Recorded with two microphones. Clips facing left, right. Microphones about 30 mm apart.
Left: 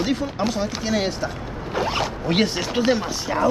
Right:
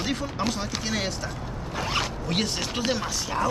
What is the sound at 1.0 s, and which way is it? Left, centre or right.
Vehicle, centre.